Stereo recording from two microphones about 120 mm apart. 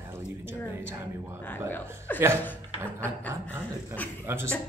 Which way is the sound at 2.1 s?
20° right (ahead or behind).